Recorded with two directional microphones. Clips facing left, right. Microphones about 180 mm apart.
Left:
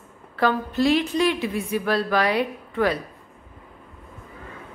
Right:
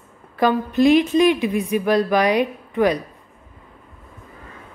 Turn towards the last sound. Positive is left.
turn(degrees=-15)  # may be behind; listen again after turning